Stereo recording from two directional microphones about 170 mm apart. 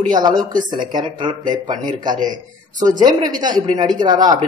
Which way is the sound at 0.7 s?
25° right (ahead or behind).